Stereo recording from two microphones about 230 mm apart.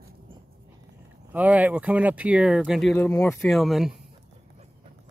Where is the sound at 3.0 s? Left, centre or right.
Centre.